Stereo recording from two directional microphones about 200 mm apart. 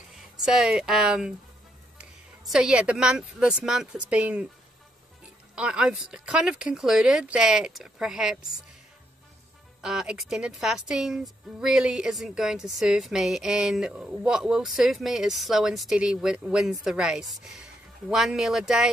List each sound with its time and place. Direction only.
0.4 s speech: centre (ahead or behind)
5.6 s speech: 5° right (ahead or behind)
9.8 s speech: 5° right (ahead or behind)